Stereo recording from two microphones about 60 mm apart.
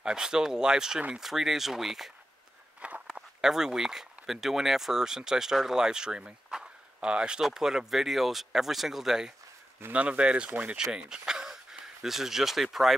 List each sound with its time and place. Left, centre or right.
0.0 s speech: centre
9.9 s speech: right; by 12.9 s centre